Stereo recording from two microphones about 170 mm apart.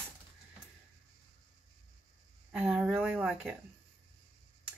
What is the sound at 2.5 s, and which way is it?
Speech, 5° right (ahead or behind).